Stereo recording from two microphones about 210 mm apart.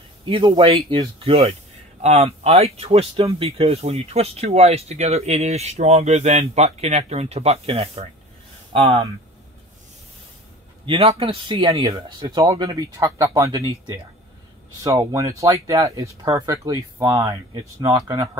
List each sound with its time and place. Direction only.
0.2 s speech: 25° right (ahead or behind)
10.9 s speech: 25° right (ahead or behind)